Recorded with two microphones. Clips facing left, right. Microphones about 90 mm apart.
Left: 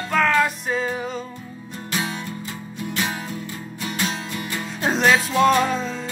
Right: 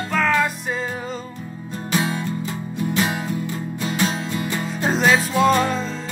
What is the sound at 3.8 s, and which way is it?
Music, 30° right (ahead or behind).